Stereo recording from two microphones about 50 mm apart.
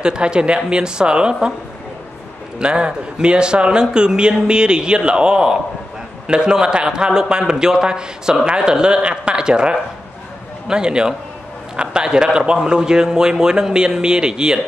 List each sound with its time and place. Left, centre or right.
0.0 s a man's voice: centre
2.6 s a man's voice: right